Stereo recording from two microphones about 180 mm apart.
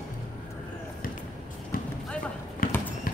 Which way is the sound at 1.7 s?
50° left (ahead or behind).